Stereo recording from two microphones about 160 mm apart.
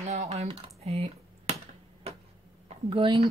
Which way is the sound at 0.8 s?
40° right (ahead or behind).